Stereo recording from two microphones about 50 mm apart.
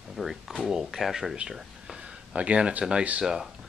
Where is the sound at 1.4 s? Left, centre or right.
Centre.